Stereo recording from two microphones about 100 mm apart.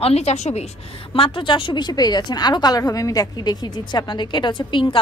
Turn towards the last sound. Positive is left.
turn(degrees=55)  # may be behind; listen again after turning